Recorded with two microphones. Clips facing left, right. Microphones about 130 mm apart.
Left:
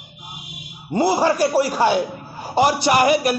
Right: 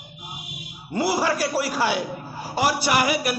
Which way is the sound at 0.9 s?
25° left (ahead or behind).